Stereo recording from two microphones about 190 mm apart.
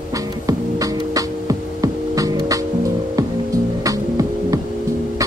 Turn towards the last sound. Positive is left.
turn(degrees=-15)  # may be behind; listen again after turning